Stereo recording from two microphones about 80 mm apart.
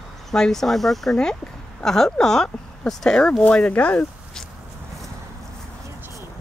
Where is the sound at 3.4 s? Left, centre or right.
Centre.